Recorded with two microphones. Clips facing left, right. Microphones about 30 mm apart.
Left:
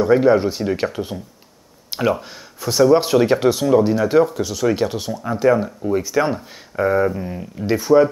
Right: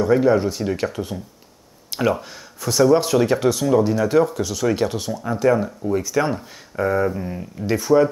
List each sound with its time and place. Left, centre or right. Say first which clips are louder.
0.0 s speech: left 2 dB; centre